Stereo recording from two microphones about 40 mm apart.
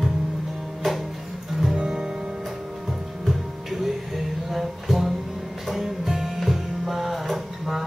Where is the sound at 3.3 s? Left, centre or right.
Centre.